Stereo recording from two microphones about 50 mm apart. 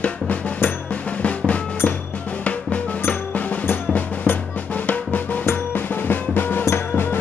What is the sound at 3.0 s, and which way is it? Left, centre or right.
Drum, left.